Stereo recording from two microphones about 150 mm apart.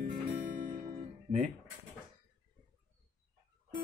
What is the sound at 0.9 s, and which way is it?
Guitar, 60° right (ahead or behind).